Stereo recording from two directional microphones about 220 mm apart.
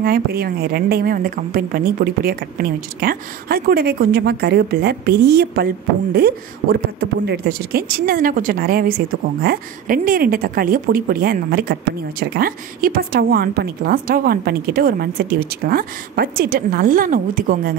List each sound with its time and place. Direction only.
0.0 s speech: 45° right (ahead or behind)